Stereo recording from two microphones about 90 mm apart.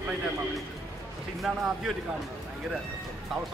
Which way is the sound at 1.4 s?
Centre (ahead or behind).